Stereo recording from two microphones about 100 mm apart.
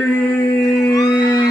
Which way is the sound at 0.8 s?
40° left (ahead or behind).